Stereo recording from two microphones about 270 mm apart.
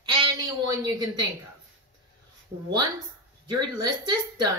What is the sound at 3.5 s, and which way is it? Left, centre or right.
A woman's voice, centre.